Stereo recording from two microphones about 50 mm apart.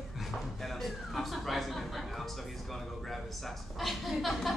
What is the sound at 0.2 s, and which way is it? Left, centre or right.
Speech, centre.